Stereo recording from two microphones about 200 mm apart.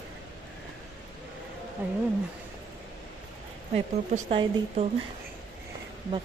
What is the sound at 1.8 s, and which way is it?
Speech, 10° right (ahead or behind).